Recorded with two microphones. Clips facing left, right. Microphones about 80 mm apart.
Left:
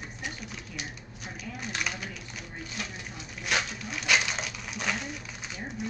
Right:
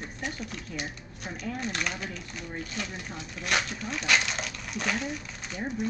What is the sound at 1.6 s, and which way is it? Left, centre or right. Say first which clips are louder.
Speech: even; centre.